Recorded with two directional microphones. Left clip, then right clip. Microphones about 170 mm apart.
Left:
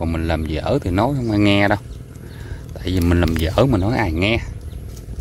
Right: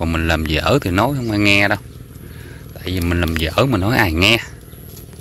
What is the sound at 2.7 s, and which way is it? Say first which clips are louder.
Speech: left 1 dB; 30° left (ahead or behind).